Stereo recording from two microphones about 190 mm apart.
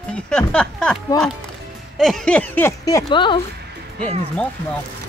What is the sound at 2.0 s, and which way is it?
Speech, centre (ahead or behind).